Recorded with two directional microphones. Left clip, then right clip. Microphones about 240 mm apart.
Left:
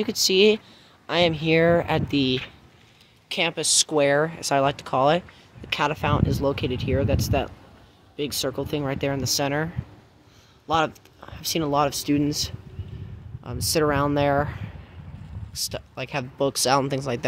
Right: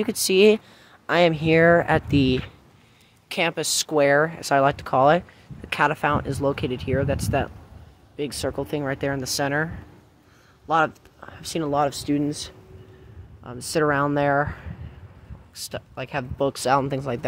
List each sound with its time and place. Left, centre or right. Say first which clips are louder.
0.0 s speech: right 1 dB; centre
10.7 s speech: right 2 dB; centre